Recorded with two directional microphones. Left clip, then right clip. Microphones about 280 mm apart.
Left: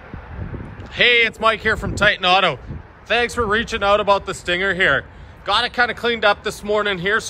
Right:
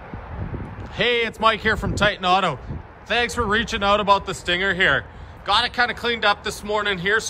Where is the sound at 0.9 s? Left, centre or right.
Centre.